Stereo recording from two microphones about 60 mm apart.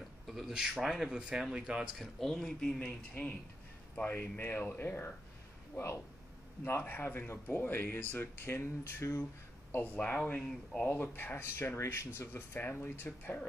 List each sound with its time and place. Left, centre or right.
0.3 s speech: centre
2.0 s speech: centre
2.8 s speech: centre
3.9 s speech: left
6.6 s speech: left
9.7 s speech: left
9.9 s speech: left
12.3 s speech: left